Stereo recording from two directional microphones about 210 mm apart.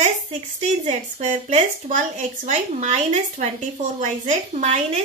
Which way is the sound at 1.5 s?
35° right (ahead or behind).